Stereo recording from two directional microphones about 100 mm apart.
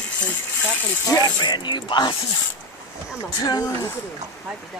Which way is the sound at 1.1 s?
40° left (ahead or behind).